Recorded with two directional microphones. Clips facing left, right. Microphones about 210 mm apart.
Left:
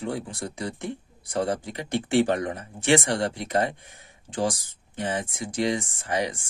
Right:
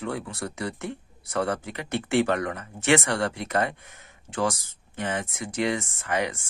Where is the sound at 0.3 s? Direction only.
15° left (ahead or behind).